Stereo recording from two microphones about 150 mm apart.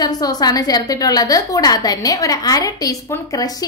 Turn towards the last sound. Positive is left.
turn(degrees=20)  # may be behind; listen again after turning